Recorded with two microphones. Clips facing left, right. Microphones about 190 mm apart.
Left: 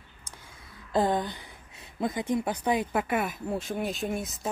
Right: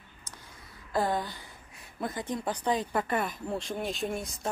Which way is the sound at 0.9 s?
20° left (ahead or behind).